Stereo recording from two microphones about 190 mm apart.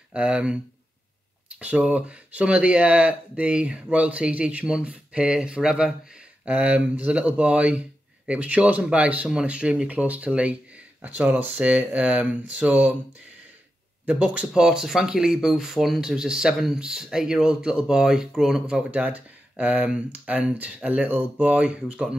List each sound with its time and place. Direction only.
0.1 s speech: 5° right (ahead or behind)
1.6 s speech: 5° right (ahead or behind)
14.0 s speech: 5° right (ahead or behind)